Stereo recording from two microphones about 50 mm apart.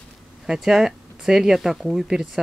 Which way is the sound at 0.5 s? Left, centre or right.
Centre.